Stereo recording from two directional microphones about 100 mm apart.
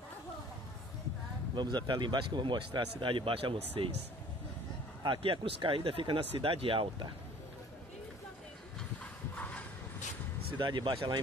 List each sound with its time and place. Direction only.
1.5 s speech: 50° right (ahead or behind)
5.0 s speech: 60° right (ahead or behind)
9.4 s vehicle: 15° left (ahead or behind)
10.6 s speech: 55° right (ahead or behind)